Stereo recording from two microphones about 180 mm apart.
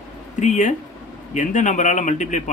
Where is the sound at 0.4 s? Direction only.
45° left (ahead or behind).